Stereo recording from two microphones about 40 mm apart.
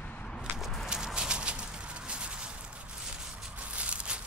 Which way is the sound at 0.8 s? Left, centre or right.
Centre.